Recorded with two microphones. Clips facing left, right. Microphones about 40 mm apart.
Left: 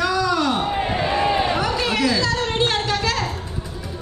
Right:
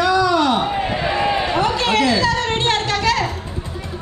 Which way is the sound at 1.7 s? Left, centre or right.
Right.